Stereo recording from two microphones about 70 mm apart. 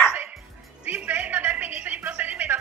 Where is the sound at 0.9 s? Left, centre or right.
Right.